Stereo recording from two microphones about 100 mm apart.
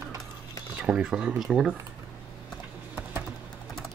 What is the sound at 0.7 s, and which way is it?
Speech, 5° right (ahead or behind).